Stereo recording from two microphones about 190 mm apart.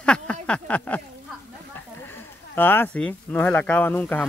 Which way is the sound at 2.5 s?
10° left (ahead or behind).